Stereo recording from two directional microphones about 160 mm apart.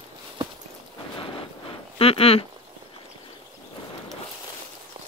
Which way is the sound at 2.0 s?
35° left (ahead or behind).